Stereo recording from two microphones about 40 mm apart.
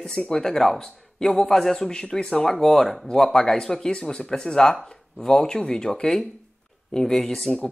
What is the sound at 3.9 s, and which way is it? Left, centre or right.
Speech, left.